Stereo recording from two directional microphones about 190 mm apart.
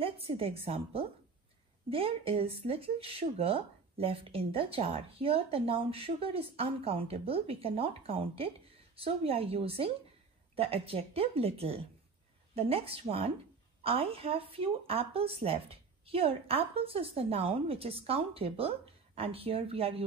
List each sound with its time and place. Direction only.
0.0 s a woman's voice: 30° right (ahead or behind)